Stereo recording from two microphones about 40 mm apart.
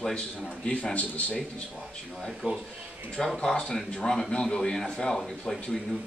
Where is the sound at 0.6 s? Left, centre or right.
Left.